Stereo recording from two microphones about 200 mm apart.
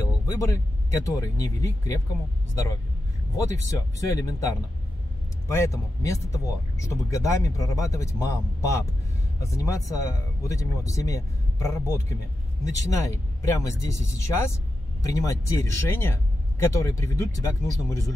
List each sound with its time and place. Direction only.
0.3 s speech: 15° left (ahead or behind)
3.6 s speech: 15° left (ahead or behind)
5.5 s speech: 15° left (ahead or behind)